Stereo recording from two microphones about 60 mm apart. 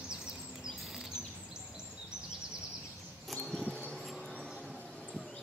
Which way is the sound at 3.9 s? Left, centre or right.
Centre.